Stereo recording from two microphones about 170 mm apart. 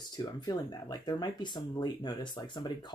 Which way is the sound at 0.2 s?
25° left (ahead or behind).